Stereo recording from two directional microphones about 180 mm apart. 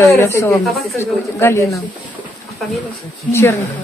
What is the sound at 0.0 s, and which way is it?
A woman's voice, 15° left (ahead or behind).